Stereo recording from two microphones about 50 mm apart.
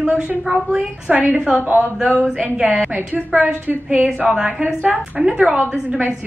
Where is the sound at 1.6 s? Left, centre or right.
Right.